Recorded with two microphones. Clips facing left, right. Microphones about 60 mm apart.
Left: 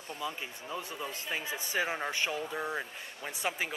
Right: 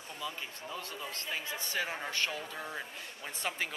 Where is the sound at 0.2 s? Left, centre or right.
Centre.